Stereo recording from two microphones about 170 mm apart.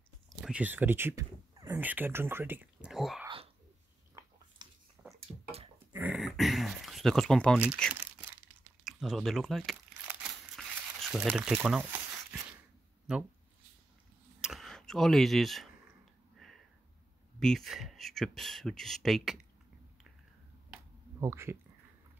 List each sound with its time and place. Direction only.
0.3 s speech: 5° right (ahead or behind)
4.2 s a sound: 20° right (ahead or behind)
5.9 s throat clearing: 5° right (ahead or behind)
7.5 s speech: 5° right (ahead or behind)
8.8 s speech: centre (ahead or behind)
10.6 s a sound: centre (ahead or behind)
11.1 s speech: 5° right (ahead or behind)
14.4 s a sound: centre (ahead or behind)
17.4 s speech: 5° left (ahead or behind)
21.2 s speech: 15° right (ahead or behind)